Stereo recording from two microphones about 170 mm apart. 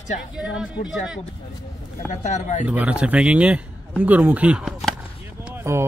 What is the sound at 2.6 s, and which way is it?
Speech, 10° right (ahead or behind).